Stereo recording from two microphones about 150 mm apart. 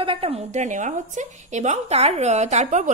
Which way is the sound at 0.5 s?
55° right (ahead or behind).